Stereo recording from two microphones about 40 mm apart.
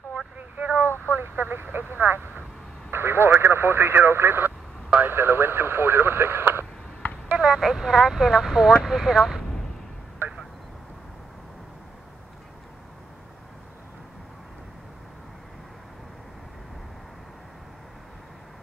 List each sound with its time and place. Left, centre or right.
0.4 s vehicle: right
1.1 s telephone: right
2.9 s speech: right
7.3 s a sound: right
7.6 s speech: centre
10.2 s vehicle: right